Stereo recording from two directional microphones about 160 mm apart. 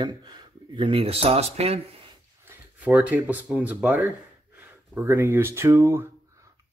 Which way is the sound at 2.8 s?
10° right (ahead or behind).